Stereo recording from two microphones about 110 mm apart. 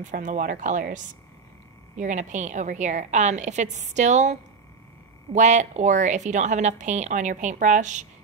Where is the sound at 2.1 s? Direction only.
90° right.